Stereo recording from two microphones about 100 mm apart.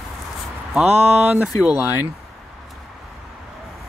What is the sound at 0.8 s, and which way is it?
Speech, 25° right (ahead or behind).